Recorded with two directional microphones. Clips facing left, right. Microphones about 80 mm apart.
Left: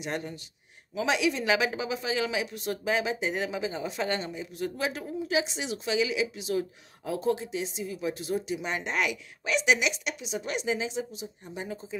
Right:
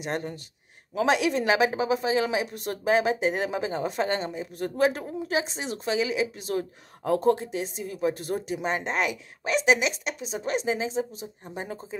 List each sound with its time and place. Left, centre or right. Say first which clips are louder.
0.0 s speech: right 3 dB; right